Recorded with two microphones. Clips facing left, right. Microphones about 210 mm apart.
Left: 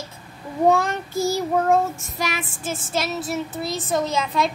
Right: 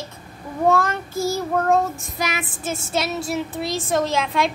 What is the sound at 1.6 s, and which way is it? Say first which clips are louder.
Child singing: right 1 dB; 5° left (ahead or behind).